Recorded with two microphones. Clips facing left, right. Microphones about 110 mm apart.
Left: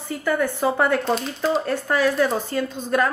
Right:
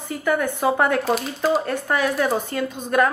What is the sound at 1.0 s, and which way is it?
A woman's voice, 5° right (ahead or behind).